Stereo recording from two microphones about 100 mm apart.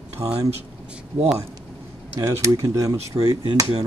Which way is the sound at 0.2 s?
35° right (ahead or behind).